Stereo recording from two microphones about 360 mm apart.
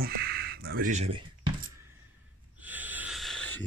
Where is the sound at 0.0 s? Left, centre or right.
Right.